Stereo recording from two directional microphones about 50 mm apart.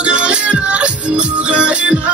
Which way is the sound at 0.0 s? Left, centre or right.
Right.